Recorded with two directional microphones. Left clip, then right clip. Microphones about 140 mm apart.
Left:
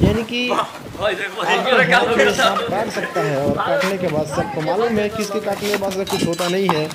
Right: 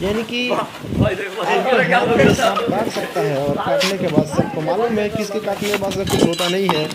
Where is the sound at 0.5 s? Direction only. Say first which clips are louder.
Even; 35° left (ahead or behind).